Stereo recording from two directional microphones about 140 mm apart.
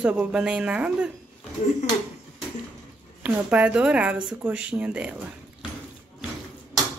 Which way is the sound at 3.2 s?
10° right (ahead or behind).